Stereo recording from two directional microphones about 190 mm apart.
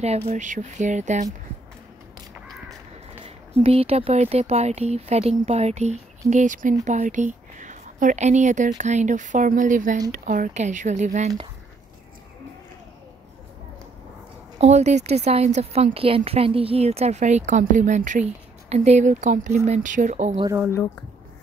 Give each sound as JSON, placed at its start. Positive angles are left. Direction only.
{"t": 0.0, "sound": "speech", "side_deg": -35}
{"t": 3.3, "sound": "speech", "side_deg": -30}
{"t": 14.6, "sound": "speech", "side_deg": -35}
{"t": 20.4, "sound": "speech", "side_deg": -10}